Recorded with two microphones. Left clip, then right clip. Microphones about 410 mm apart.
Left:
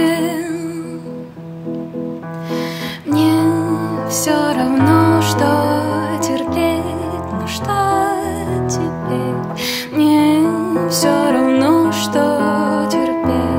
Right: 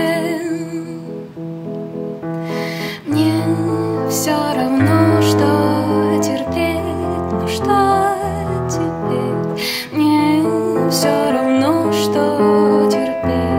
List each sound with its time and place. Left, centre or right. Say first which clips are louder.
3.1 s music: left 3 dB; centre
9.9 s music: left 2 dB; centre